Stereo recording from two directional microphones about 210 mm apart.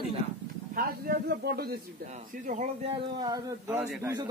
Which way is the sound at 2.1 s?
35° right (ahead or behind).